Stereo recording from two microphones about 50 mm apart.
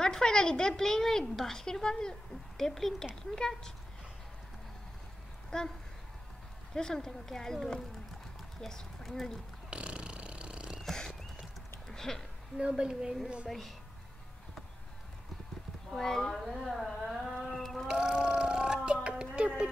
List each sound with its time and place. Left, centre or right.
0.0 s a woman's voice: centre
5.5 s a woman's voice: centre
6.7 s a woman's voice: centre
9.7 s a sound: right
10.8 s a sound: centre
11.9 s speech: centre
12.5 s speech: centre
13.5 s speech: centre
16.0 s a woman's voice: centre
17.8 s a sound: centre